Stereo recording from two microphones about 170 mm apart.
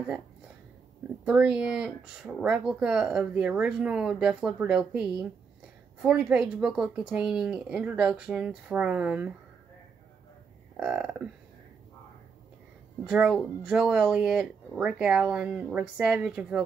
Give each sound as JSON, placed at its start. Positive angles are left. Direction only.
{"t": 1.2, "sound": "speech", "side_deg": -5}
{"t": 10.8, "sound": "speech", "side_deg": -5}
{"t": 13.0, "sound": "speech", "side_deg": -5}